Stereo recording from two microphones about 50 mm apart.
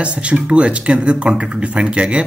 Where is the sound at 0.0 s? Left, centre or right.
Right.